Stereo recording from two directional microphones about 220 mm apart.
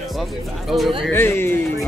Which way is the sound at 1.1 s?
10° left (ahead or behind).